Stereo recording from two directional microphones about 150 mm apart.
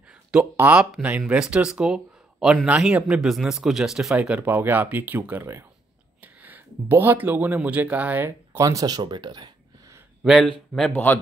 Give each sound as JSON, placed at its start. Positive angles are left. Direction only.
{"t": 0.4, "sound": "speech", "side_deg": -10}
{"t": 8.5, "sound": "speech", "side_deg": -25}
{"t": 10.2, "sound": "a man's voice", "side_deg": 0}